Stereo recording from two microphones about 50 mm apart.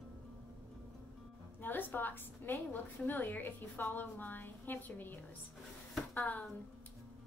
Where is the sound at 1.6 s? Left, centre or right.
Left.